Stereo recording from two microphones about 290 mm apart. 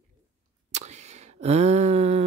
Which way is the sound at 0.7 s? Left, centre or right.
Right.